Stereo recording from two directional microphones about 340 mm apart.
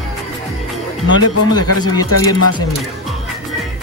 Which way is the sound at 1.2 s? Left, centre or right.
Left.